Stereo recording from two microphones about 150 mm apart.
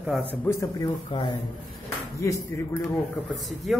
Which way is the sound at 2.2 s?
20° left (ahead or behind).